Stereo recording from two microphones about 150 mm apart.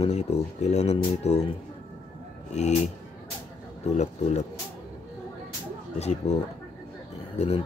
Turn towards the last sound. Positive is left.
turn(degrees=45)  # may be behind; listen again after turning